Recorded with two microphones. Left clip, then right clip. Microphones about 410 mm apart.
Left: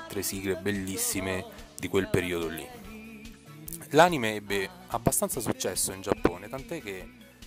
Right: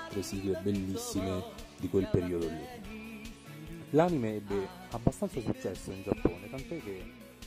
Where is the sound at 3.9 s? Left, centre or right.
Left.